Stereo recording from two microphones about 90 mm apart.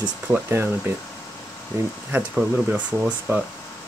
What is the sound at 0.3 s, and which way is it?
Speech, 25° right (ahead or behind).